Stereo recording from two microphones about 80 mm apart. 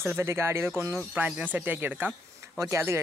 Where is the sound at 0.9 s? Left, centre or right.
Centre; by 3.0 s right.